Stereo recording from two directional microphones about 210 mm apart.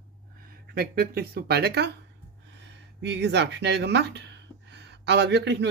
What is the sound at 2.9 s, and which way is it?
Speech, 55° right (ahead or behind).